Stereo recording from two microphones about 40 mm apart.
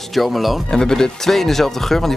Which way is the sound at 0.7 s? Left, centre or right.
Centre.